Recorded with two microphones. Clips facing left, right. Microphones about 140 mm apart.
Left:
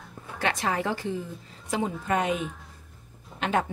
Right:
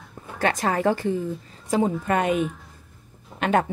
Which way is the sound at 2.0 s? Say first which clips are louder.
Right 3 dB; 55° right (ahead or behind).